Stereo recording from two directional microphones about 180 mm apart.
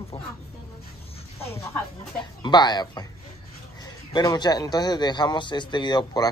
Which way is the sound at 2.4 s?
25° left (ahead or behind).